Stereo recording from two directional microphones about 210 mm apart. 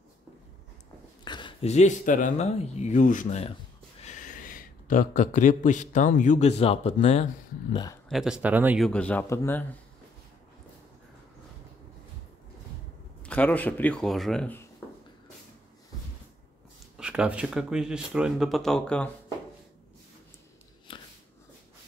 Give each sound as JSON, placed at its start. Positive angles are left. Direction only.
{"t": 1.2, "sound": "a man's voice", "side_deg": 20}
{"t": 7.7, "sound": "speech", "side_deg": 20}
{"t": 8.1, "sound": "speech", "side_deg": -5}
{"t": 8.8, "sound": "speech", "side_deg": 5}
{"t": 13.2, "sound": "speech", "side_deg": 5}
{"t": 16.9, "sound": "speech", "side_deg": -5}
{"t": 20.9, "sound": "biting", "side_deg": 25}